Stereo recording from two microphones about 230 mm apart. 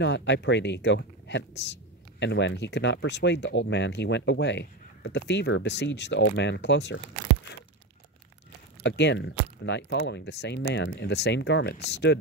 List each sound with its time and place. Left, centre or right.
0.0 s speech: left
8.8 s speech: left